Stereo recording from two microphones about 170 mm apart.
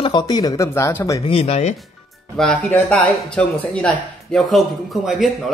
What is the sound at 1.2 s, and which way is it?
Speech, 35° left (ahead or behind).